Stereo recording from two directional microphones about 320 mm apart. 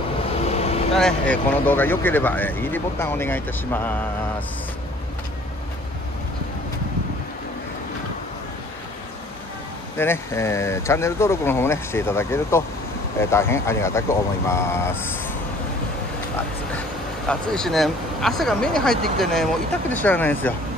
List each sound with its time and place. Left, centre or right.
0.5 s vehicle: centre
0.9 s speech: centre
9.9 s speech: centre
17.3 s speech: centre